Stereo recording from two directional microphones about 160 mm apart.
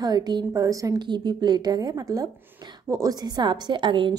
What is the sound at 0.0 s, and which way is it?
A woman's voice, 25° right (ahead or behind).